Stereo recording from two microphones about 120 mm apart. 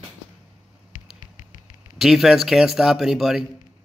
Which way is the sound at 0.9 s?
90° left.